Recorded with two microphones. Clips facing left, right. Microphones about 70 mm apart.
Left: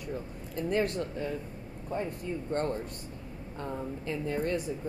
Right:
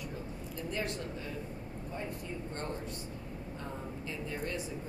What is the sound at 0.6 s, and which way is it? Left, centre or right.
A woman's voice, left.